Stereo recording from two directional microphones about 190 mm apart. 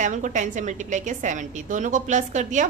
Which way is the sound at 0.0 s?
40° right (ahead or behind).